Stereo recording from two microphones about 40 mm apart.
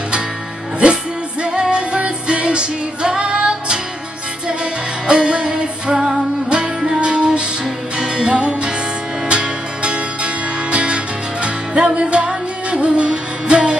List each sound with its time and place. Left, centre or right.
1.4 s music: right
5.0 s music: right